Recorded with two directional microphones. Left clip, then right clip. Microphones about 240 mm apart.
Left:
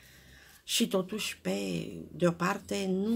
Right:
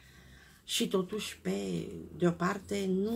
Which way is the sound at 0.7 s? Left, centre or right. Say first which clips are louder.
Left 2 dB; left.